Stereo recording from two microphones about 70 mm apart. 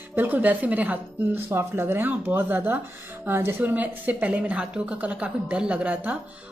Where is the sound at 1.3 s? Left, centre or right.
Right.